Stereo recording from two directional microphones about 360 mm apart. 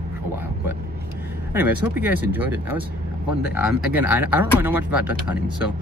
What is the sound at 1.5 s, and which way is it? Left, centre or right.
Speech, centre.